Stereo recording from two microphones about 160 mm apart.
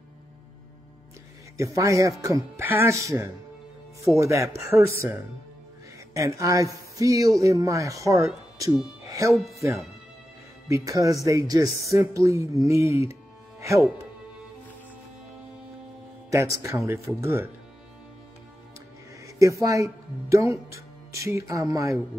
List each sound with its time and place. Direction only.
1.6 s speech: 20° right (ahead or behind)
9.3 s speech: centre (ahead or behind)
10.7 s speech: 20° right (ahead or behind)
16.3 s speech: 20° right (ahead or behind)
19.2 s speech: 20° right (ahead or behind)